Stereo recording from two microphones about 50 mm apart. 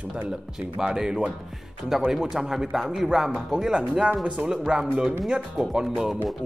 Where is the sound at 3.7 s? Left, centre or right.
Centre.